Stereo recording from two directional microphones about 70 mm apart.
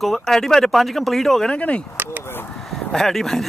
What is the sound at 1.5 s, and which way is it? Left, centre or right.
Speech, centre.